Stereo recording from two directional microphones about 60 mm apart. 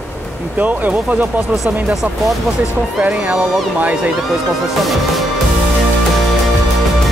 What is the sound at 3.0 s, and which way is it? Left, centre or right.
Speech, right.